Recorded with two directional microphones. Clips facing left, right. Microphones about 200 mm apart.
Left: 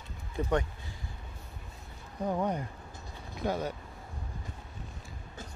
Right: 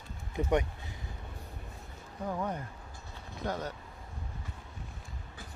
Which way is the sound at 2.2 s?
15° left (ahead or behind).